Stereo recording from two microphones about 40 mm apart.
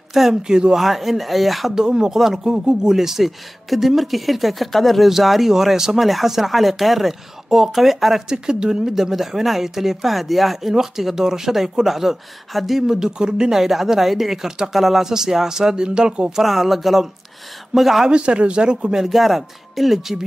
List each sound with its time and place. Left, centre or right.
0.1 s speech: centre
0.4 s speech: centre
0.7 s speech: centre
1.8 s speech: centre
2.4 s speech: centre
8.3 s speech: centre
13.6 s speech: centre
16.3 s speech: centre
18.0 s speech: right
18.9 s speech: centre